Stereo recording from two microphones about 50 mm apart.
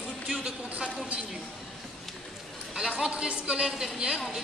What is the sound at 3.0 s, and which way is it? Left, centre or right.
A woman's voice, centre.